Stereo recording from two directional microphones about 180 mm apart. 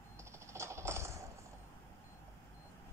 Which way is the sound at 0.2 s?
15° right (ahead or behind).